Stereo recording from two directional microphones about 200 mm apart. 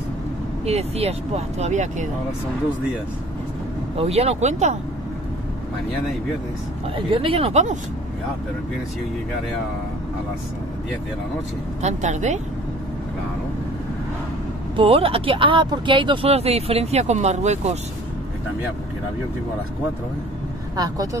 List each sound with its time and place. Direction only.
0.7 s speech: 30° right (ahead or behind)
4.0 s speech: 30° right (ahead or behind)
7.1 s speech: 25° right (ahead or behind)
11.8 s speech: 35° right (ahead or behind)
14.8 s speech: 30° right (ahead or behind)
20.7 s speech: 20° right (ahead or behind)